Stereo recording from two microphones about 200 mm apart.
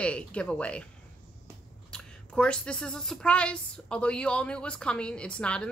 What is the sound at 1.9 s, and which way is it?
Speech, 5° left (ahead or behind).